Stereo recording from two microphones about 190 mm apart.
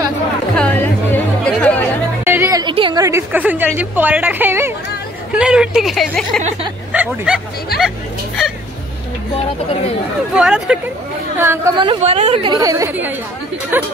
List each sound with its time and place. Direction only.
0.6 s chatter: 10° left (ahead or behind)
2.2 s music: 10° right (ahead or behind)
2.6 s a woman's voice: 25° right (ahead or behind); by 7.4 s 5° right (ahead or behind)
10.3 s a woman's voice: 5° right (ahead or behind)
11.7 s a woman's voice: 25° right (ahead or behind)
12.5 s a woman's voice: 15° right (ahead or behind)